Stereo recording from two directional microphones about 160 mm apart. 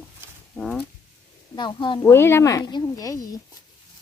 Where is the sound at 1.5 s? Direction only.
30° left (ahead or behind).